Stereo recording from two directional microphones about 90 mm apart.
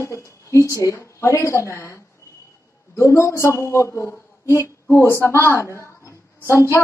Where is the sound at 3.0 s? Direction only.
30° left (ahead or behind).